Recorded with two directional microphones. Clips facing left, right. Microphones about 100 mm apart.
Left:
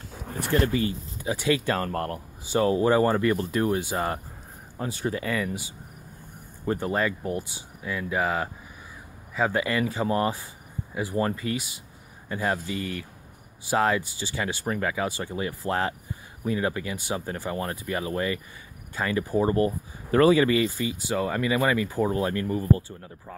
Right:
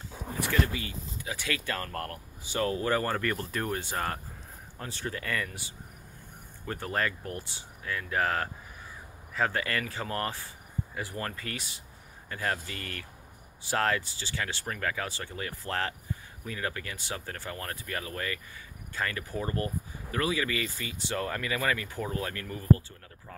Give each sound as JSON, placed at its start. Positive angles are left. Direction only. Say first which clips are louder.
{"t": 0.5, "sound": "speech", "louder": "left 8 dB", "side_deg": 35}
{"t": 1.3, "sound": "speech", "louder": "left 9 dB", "side_deg": 20}
{"t": 6.8, "sound": "speech", "louder": "left 2 dB", "side_deg": 5}
{"t": 20.1, "sound": "speech", "louder": "left 12 dB", "side_deg": 40}
{"t": 20.4, "sound": "speech", "louder": "left 10 dB", "side_deg": 20}